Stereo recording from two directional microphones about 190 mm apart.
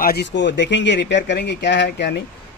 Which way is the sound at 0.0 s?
55° left (ahead or behind).